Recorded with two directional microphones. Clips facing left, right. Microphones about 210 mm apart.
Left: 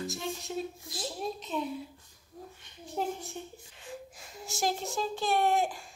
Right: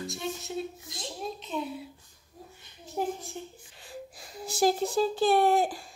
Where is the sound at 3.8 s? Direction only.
35° right (ahead or behind).